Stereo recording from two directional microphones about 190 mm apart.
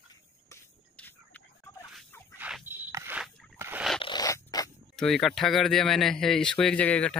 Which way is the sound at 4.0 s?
20° left (ahead or behind).